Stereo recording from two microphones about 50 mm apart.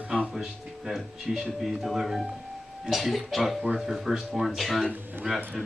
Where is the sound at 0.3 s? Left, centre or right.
Centre.